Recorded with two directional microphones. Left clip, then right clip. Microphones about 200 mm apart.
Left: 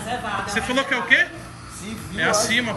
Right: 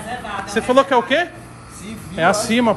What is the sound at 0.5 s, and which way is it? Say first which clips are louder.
Speech: right 10 dB; 10° right (ahead or behind).